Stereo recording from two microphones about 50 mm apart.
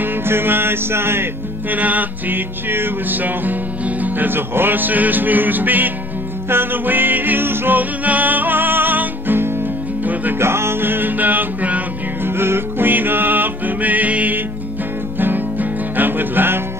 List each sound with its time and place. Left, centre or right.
0.0 s music: right
1.7 s music: right
8.0 s music: right
10.4 s music: right
12.4 s music: right
15.1 s music: right